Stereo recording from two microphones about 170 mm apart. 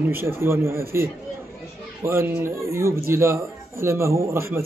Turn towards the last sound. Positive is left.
turn(degrees=-15)  # may be behind; listen again after turning